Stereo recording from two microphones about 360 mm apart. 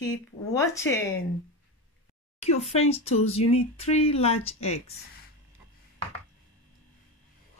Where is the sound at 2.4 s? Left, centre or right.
Centre.